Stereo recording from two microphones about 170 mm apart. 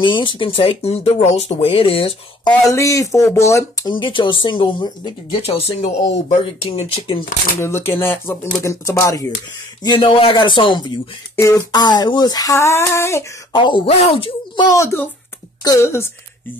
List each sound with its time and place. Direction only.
0.0 s speech: 30° left (ahead or behind)
2.7 s speech: 20° left (ahead or behind)
5.6 s speech: 40° left (ahead or behind)
7.6 s speech: 15° left (ahead or behind)
9.8 s speech: 30° left (ahead or behind)
13.5 s speech: 30° left (ahead or behind)